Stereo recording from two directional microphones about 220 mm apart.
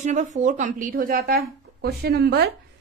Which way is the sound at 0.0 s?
30° right (ahead or behind).